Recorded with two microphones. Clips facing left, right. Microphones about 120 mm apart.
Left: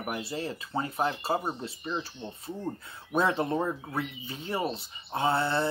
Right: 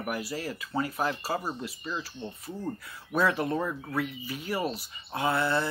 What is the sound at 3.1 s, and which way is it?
Speech, 25° left (ahead or behind).